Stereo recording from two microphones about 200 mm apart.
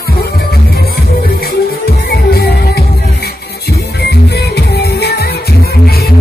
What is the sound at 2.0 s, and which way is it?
Music, 50° left (ahead or behind).